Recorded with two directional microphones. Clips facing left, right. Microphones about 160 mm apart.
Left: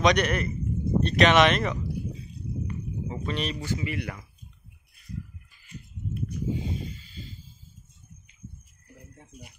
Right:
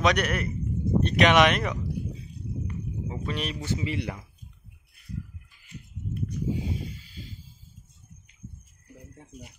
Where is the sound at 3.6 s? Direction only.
25° right (ahead or behind).